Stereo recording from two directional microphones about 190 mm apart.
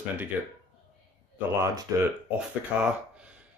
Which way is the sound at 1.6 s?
15° right (ahead or behind).